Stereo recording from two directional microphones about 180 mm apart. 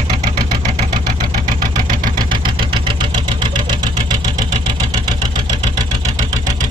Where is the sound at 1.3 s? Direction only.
45° right (ahead or behind).